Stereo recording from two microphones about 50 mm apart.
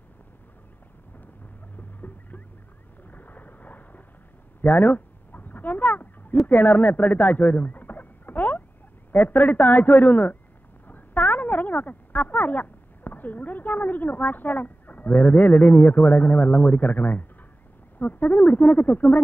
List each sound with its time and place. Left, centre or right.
1.8 s rodents: left
3.1 s boat: left
4.6 s a sound: left
6.4 s a man's voice: left